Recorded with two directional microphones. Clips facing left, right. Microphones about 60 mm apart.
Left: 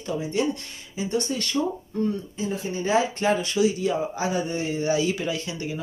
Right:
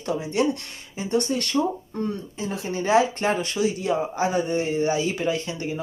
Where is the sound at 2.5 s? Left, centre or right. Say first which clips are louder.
Right 3 dB; right.